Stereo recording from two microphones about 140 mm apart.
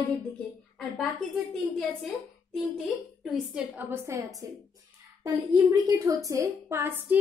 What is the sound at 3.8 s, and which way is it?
A woman's voice, 15° right (ahead or behind).